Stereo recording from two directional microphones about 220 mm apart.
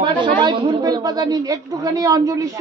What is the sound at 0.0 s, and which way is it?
A woman's voice, 20° right (ahead or behind).